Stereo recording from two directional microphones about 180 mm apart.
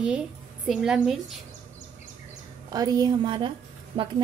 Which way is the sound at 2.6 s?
20° right (ahead or behind).